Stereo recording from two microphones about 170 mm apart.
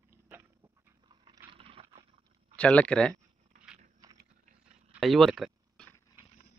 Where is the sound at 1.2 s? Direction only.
30° right (ahead or behind).